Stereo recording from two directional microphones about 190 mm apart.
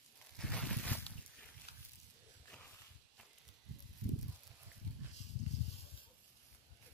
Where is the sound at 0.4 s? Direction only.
5° left (ahead or behind).